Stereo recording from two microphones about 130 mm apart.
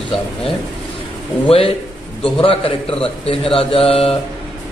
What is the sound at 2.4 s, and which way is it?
A man's voice, 45° left (ahead or behind).